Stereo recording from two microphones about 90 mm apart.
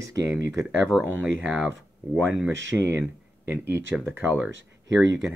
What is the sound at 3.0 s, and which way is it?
Speech, 25° right (ahead or behind).